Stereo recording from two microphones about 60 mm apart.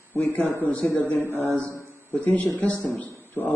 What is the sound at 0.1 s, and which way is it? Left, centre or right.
A man's voice, left.